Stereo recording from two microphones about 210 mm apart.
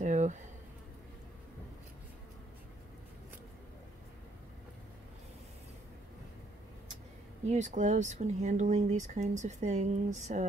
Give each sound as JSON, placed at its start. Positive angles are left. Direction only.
{"t": 0.0, "sound": "bee", "side_deg": -35}
{"t": 7.4, "sound": "speech", "side_deg": -35}